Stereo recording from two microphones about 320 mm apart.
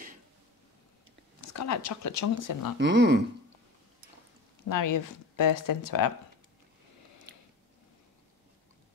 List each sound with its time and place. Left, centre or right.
1.4 s speech: left
2.8 s speech: right
4.6 s speech: left